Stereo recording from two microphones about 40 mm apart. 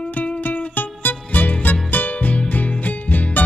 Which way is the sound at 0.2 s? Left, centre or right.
Left.